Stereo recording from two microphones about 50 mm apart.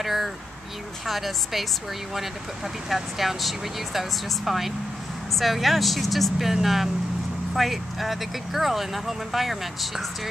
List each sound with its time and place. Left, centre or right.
0.0 s speech: centre
2.9 s speech: centre